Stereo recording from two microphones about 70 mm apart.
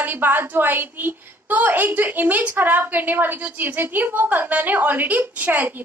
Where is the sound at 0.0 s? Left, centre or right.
Right.